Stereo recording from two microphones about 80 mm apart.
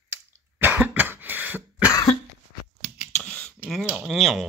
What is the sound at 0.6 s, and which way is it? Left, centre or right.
Cough, right.